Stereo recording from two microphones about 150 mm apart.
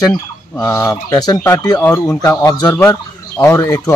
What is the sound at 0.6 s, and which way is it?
Speech, 20° left (ahead or behind).